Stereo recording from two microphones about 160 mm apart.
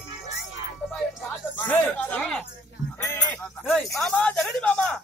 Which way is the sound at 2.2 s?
5° left (ahead or behind).